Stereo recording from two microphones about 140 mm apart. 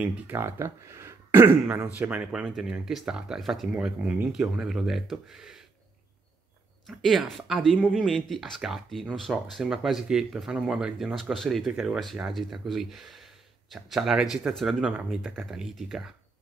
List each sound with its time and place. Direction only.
0.0 s speech: 15° right (ahead or behind)
6.9 s speech: centre (ahead or behind)